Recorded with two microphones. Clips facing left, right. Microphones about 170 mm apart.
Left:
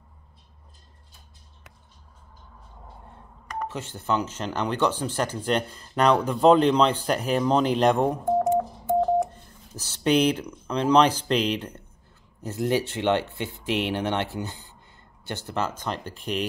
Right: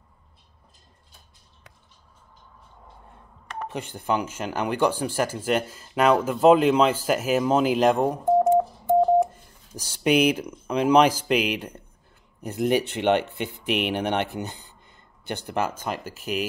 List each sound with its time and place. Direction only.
3.6 s speech: 15° right (ahead or behind)
8.4 s telephone dialing: 10° right (ahead or behind)
12.4 s speech: 15° right (ahead or behind)